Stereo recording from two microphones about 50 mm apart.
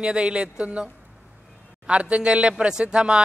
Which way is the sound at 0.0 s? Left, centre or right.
Centre.